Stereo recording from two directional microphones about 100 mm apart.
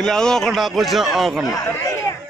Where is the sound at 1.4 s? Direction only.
35° left (ahead or behind).